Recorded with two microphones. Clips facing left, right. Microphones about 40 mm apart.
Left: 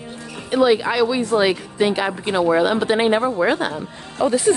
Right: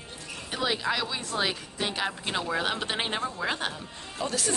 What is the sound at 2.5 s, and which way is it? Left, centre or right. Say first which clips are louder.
Speech: left 11 dB; centre.